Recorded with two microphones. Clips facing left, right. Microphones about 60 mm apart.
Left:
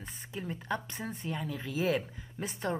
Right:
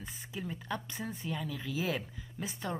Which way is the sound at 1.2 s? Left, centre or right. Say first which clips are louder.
Left 2 dB; left.